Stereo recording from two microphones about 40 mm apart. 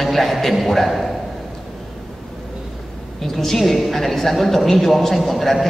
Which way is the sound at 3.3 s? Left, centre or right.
Centre.